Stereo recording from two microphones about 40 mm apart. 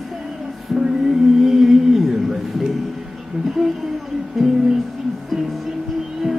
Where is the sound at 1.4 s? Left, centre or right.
Centre.